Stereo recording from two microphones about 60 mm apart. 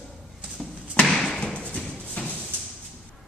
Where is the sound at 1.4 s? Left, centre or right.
Centre.